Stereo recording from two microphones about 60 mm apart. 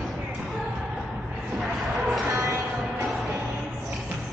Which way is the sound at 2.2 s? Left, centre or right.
Right.